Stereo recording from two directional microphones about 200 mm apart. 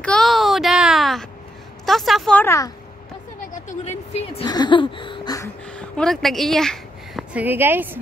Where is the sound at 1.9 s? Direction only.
Centre (ahead or behind).